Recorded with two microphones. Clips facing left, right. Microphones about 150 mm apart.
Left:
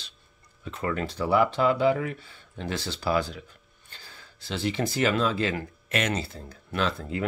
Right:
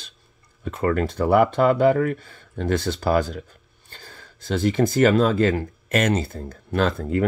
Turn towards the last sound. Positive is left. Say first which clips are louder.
# right 7 dB
turn(degrees=-45)  # may be behind; listen again after turning